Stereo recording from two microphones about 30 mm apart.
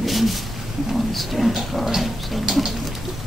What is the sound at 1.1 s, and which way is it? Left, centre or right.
Speech, centre.